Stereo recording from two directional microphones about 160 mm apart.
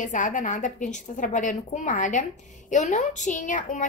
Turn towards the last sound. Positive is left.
turn(degrees=55)  # may be behind; listen again after turning